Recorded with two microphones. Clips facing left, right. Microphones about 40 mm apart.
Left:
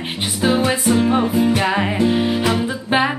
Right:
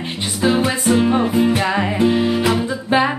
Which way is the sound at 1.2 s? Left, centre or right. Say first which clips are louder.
Right 1 dB; centre.